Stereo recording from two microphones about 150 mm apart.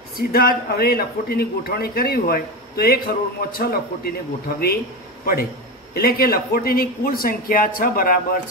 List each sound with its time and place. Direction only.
0.3 s a man's voice: 90° left
5.9 s speech: 80° left